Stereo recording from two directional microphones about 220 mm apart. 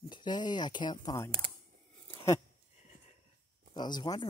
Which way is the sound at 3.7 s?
20° left (ahead or behind).